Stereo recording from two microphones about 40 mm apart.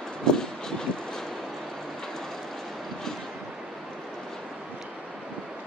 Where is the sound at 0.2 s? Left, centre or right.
Centre.